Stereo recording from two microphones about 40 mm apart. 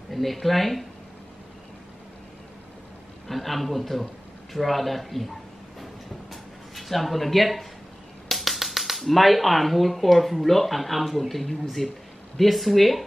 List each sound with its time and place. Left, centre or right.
0.1 s speech: centre
3.3 s speech: centre
6.7 s speech: centre